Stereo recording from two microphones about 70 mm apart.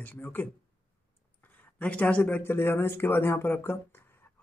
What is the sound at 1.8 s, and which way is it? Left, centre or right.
Speech, centre.